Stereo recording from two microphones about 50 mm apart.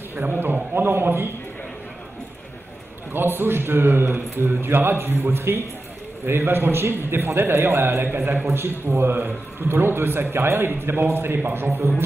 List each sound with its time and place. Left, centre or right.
0.1 s a man's voice: right
3.1 s a man's voice: right